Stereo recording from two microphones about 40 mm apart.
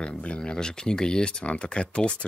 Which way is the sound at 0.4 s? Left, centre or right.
Centre.